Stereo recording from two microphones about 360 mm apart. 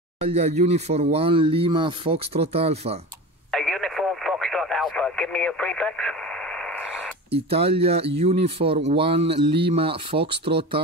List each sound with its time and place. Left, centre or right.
0.2 s speech: centre
3.5 s radio: centre
7.2 s speech: centre
10.2 s speech: right